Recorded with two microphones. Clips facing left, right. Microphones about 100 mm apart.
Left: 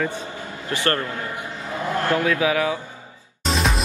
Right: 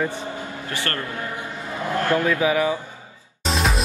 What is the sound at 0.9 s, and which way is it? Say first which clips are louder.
Speech: left 8 dB; 35° left (ahead or behind).